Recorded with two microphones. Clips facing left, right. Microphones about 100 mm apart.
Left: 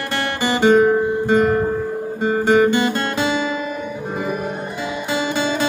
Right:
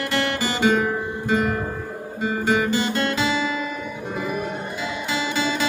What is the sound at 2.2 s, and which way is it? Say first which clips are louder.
Guitar: left 7 dB; 40° left (ahead or behind).